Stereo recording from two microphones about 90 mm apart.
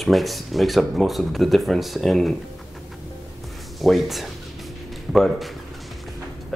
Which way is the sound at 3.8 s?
Centre (ahead or behind).